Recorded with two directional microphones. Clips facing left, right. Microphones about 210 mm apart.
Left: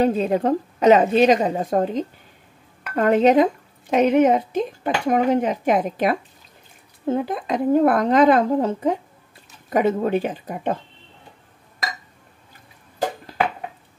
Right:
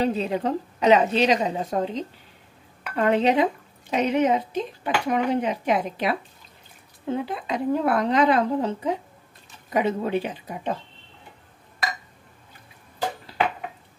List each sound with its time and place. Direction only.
0.0 s speech: 50° left (ahead or behind)